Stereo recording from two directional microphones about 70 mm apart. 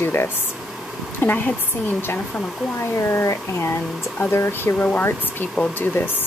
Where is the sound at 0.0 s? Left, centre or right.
Left.